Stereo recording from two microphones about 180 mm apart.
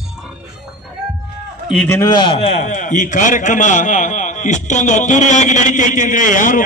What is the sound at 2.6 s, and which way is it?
A man's voice, 45° left (ahead or behind).